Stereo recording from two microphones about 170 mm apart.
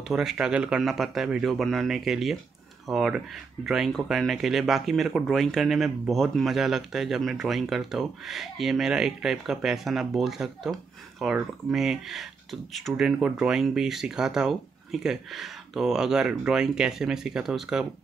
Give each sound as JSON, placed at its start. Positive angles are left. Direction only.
{"t": 0.1, "sound": "speech", "side_deg": -5}